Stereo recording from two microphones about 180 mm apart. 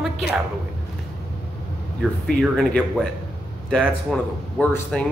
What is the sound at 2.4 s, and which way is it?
Speech, centre (ahead or behind).